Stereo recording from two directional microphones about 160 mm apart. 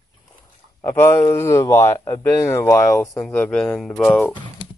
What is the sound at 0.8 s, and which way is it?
Speech, 15° left (ahead or behind).